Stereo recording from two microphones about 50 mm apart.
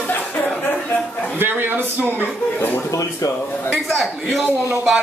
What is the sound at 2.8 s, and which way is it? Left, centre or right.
Speech, left.